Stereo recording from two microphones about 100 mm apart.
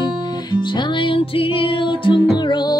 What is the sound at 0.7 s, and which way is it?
Music, 55° left (ahead or behind).